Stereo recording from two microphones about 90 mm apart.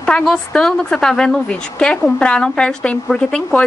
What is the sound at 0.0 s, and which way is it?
A woman's voice, 10° left (ahead or behind).